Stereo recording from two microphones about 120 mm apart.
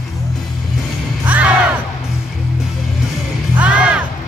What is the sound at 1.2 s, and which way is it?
Music, 15° right (ahead or behind).